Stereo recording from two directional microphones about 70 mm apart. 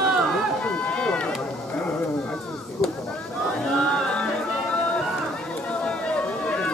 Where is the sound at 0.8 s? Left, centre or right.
Centre.